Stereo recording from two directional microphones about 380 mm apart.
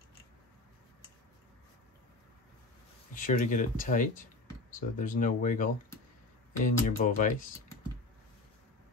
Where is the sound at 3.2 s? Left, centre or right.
Left.